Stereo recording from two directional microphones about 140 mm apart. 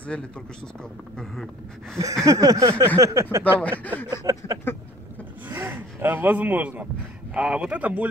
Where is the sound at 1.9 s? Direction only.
20° right (ahead or behind).